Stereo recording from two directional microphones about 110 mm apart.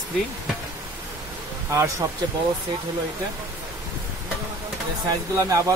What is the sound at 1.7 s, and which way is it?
Speech, 25° right (ahead or behind).